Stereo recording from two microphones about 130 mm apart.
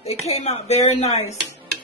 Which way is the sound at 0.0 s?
55° left (ahead or behind).